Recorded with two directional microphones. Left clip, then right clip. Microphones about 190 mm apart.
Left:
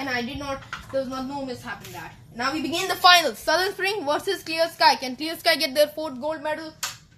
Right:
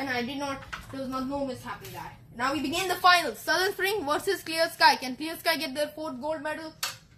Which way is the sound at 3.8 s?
10° left (ahead or behind).